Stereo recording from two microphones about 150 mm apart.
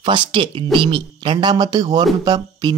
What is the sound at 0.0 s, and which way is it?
Speech, 30° right (ahead or behind).